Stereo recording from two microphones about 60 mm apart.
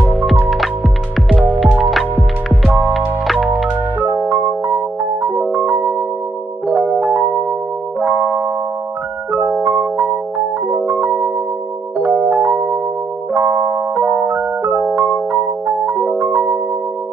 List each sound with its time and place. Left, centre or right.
4.0 s music: right